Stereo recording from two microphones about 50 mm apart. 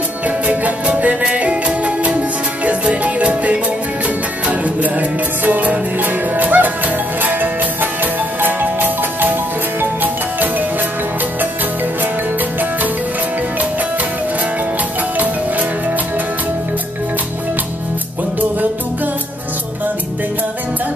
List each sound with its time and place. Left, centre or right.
0.5 s music: right